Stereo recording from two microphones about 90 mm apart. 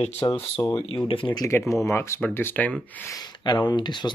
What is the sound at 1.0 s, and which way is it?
Speech, 75° left (ahead or behind).